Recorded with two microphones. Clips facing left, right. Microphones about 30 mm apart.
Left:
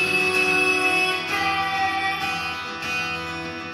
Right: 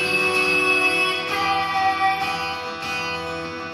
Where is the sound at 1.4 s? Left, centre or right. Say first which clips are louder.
Right 3 dB; centre.